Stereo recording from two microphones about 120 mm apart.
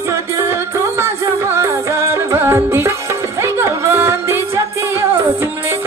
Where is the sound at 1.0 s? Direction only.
20° right (ahead or behind).